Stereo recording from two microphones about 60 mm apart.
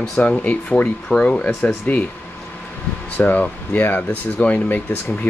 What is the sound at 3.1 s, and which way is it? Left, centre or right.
Speech, left.